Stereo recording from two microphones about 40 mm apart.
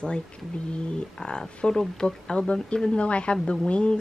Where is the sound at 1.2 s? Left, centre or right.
Left.